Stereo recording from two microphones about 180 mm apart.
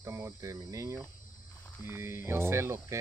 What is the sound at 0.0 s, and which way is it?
Speech, 15° right (ahead or behind).